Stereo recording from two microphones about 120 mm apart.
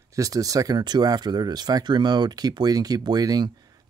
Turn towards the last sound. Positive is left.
turn(degrees=-35)  # may be behind; listen again after turning